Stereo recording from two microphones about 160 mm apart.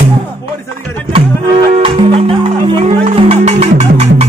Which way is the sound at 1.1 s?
35° right (ahead or behind).